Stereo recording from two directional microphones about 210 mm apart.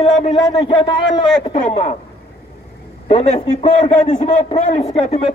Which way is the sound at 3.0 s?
30° left (ahead or behind).